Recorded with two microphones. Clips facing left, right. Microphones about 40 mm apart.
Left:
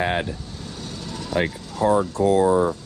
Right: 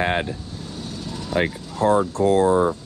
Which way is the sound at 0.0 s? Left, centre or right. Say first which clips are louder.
Right 1 dB; right.